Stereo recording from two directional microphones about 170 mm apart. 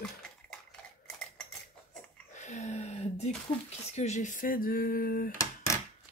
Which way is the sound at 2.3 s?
45° left (ahead or behind).